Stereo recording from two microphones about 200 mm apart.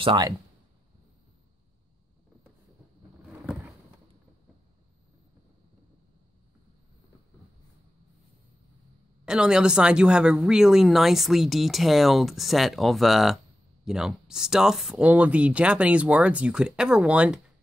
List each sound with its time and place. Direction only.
0.0 s speech: 25° right (ahead or behind)
9.2 s a woman's voice: 5° right (ahead or behind)